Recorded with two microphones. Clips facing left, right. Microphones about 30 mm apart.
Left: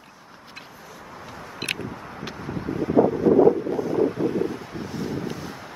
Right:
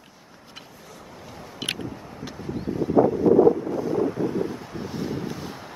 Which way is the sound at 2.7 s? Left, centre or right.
Left.